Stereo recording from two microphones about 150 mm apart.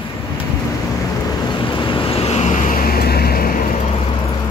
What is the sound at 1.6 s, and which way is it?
Vehicle, 35° left (ahead or behind).